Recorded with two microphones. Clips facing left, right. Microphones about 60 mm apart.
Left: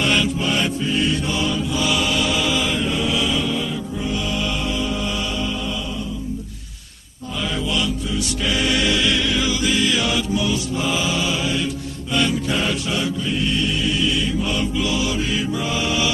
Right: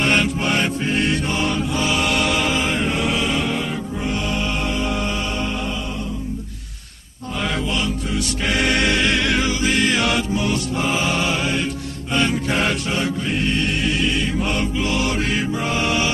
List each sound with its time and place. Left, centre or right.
0.0 s mantra: right
0.6 s music: right
4.3 s music: right
4.6 s mantra: right
7.3 s mantra: right
8.1 s music: right
9.5 s music: right
9.8 s music: right
12.1 s mantra: right
13.0 s music: right
15.6 s mantra: right